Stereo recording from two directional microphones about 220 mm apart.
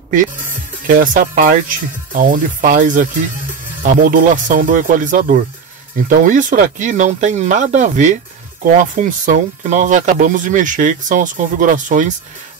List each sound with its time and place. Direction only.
0.8 s speech: 35° right (ahead or behind)